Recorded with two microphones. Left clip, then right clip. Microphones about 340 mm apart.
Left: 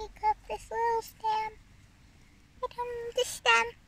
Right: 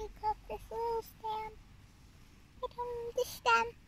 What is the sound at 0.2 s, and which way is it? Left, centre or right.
Child singing, left.